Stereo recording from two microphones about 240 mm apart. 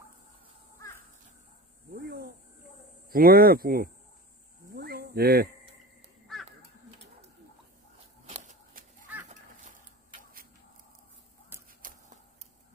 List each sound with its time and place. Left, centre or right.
2.0 s a sound: right
3.1 s speech: right
4.7 s cricket: right
8.3 s shuffling cards: right